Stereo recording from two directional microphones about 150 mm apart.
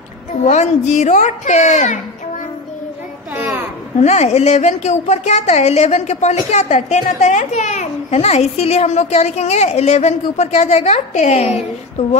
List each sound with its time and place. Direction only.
0.4 s a woman's voice: 50° left (ahead or behind)
3.3 s a sound: 10° right (ahead or behind)
4.0 s a woman's voice: 45° left (ahead or behind)